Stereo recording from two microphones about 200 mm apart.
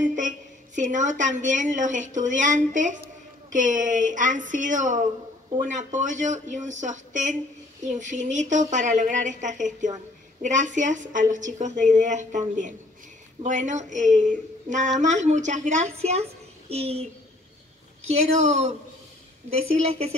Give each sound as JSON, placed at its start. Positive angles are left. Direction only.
{"t": 0.7, "sound": "a woman's voice", "side_deg": -40}
{"t": 18.0, "sound": "a woman's voice", "side_deg": -35}
{"t": 19.9, "sound": "a woman's voice", "side_deg": -30}